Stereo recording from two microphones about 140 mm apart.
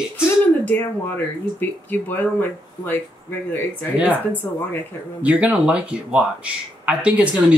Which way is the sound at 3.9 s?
10° right (ahead or behind).